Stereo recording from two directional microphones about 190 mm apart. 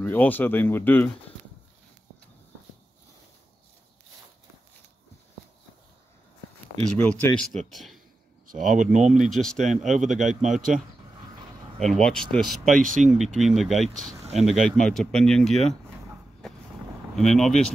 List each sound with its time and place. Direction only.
0.0 s speech: 10° left (ahead or behind)
7.0 s speech: 10° left (ahead or behind)
8.5 s speech: 45° right (ahead or behind)
9.2 s speech: centre (ahead or behind)
9.8 s speech: 40° right (ahead or behind)
11.8 s speech: 5° left (ahead or behind)
12.8 s speech: 45° right (ahead or behind)
13.2 s speech: centre (ahead or behind)
16.4 s vehicle: centre (ahead or behind)
17.1 s speech: centre (ahead or behind)